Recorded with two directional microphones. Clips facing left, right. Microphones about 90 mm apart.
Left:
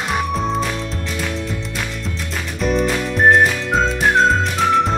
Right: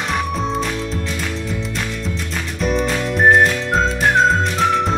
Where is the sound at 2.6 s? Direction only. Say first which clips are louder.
Left 1 dB; centre (ahead or behind).